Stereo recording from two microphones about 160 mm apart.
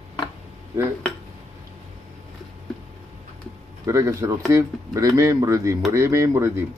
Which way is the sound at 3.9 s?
20° right (ahead or behind).